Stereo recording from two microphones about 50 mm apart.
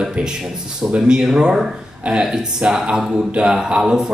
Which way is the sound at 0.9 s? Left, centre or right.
Centre.